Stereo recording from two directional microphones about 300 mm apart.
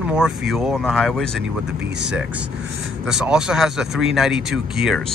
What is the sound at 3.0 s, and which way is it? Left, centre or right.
Speech, centre.